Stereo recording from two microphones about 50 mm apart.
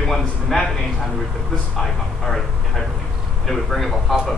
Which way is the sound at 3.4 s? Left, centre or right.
Centre.